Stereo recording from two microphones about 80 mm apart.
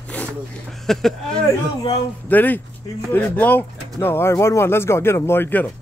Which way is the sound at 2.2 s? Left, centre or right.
Left.